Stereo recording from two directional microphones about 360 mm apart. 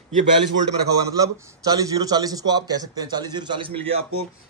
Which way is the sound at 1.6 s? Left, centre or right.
Centre.